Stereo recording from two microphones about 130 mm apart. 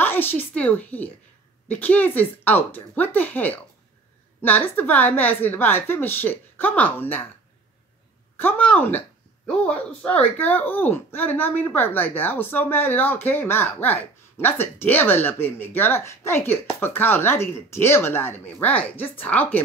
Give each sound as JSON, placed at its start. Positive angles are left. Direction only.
{"t": 0.0, "sound": "a sound", "side_deg": 15}
{"t": 1.7, "sound": "speech", "side_deg": 15}
{"t": 8.4, "sound": "speech", "side_deg": 10}
{"t": 10.1, "sound": "speech", "side_deg": 15}